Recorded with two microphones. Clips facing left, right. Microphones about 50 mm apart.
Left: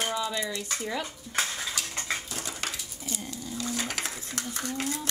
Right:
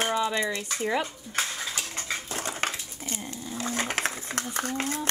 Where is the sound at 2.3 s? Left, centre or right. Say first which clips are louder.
Right 5 dB; right.